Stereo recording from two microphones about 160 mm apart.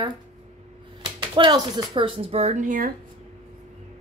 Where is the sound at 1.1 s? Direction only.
30° right (ahead or behind); by 2.9 s 55° right (ahead or behind).